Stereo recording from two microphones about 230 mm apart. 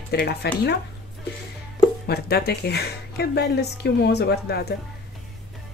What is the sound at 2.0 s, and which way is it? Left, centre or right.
Speech, left.